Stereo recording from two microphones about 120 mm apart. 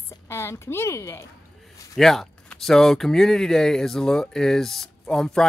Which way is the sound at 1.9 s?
5° left (ahead or behind).